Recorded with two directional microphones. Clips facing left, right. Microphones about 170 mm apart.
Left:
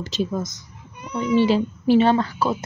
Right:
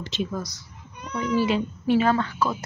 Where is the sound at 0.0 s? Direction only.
40° left (ahead or behind).